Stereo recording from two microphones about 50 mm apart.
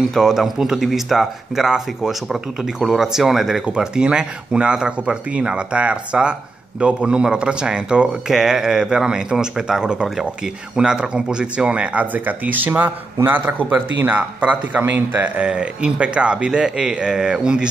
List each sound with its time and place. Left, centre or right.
0.2 s a man's voice: centre
3.6 s a man's voice: centre